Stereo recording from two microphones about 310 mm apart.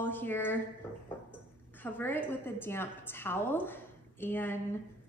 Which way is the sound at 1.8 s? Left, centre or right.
Centre.